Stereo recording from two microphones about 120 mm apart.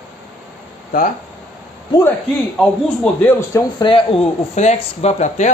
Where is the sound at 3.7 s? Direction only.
45° left (ahead or behind).